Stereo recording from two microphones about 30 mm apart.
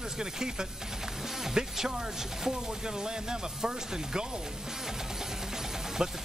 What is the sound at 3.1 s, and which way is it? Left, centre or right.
Speech, right.